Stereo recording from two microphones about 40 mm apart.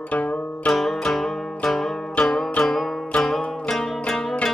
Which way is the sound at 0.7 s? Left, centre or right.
Centre.